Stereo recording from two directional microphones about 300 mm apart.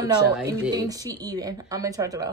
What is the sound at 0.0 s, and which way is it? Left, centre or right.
Speech, centre.